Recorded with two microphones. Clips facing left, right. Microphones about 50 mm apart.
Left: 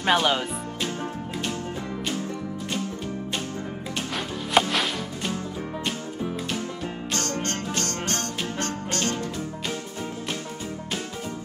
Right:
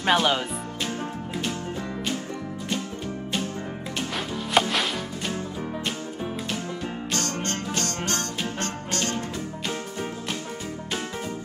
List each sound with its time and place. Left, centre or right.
0.1 s speech: centre
4.6 s music: centre
7.4 s music: left